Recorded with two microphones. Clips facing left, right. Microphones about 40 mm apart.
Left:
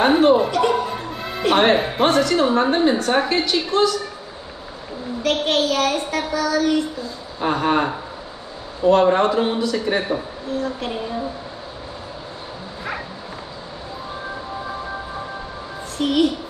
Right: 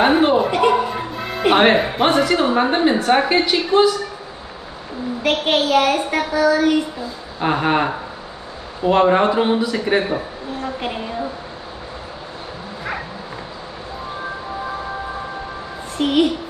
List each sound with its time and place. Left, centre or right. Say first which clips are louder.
0.0 s speech: even; centre
5.2 s a man's voice: right 1 dB; right
16.0 s a man's voice: right 2 dB; right